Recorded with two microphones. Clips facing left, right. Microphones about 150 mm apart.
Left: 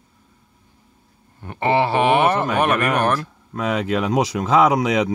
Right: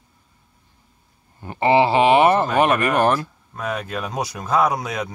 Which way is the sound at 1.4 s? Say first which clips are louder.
Right 2 dB; 10° right (ahead or behind).